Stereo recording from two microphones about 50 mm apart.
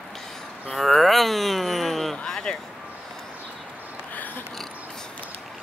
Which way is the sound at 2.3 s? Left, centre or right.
Centre.